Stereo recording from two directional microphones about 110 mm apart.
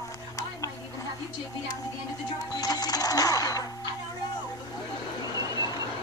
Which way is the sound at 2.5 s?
35° left (ahead or behind).